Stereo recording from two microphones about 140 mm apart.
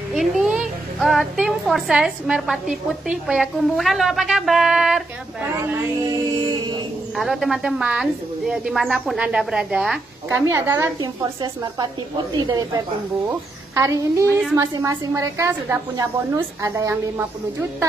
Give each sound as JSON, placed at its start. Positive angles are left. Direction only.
{"t": 0.1, "sound": "a woman's voice", "side_deg": 0}
{"t": 6.0, "sound": "a sound", "side_deg": -30}
{"t": 7.2, "sound": "a woman's voice", "side_deg": 0}
{"t": 10.5, "sound": "a woman's voice", "side_deg": -20}
{"t": 11.0, "sound": "a woman's voice", "side_deg": -30}